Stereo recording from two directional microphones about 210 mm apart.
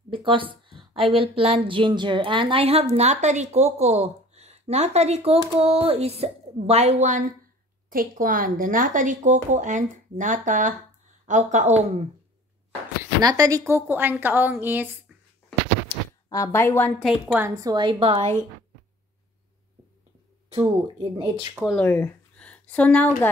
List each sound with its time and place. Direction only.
0.1 s a sound: 25° right (ahead or behind)
1.1 s a woman's voice: 25° right (ahead or behind)
13.2 s a woman's voice: 15° right (ahead or behind)
16.3 s a woman's voice: 15° left (ahead or behind)
17.3 s a woman's voice: 15° right (ahead or behind)
20.5 s a woman's voice: 20° right (ahead or behind)
21.5 s speech: centre (ahead or behind)
21.8 s speech: 10° left (ahead or behind)